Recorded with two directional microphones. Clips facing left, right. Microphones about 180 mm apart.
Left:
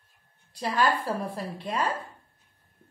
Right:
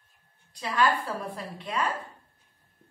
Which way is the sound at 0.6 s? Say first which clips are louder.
Even; 35° left (ahead or behind).